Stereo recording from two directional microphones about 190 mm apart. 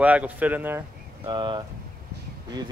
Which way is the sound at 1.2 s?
25° right (ahead or behind).